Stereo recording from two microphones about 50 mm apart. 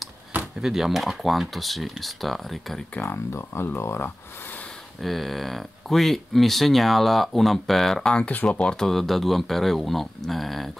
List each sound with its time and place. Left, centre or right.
0.6 s speech: centre
3.0 s speech: left
5.0 s speech: centre
8.0 s speech: centre